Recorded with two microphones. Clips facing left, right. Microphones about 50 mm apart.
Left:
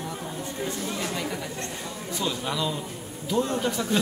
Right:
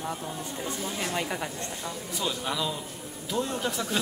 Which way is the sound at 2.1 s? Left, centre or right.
Centre.